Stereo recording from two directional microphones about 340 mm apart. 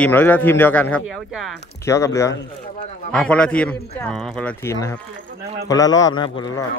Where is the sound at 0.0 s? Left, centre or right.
Centre.